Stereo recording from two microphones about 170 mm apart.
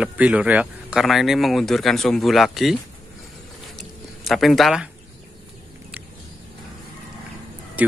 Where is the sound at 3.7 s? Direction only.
Centre (ahead or behind).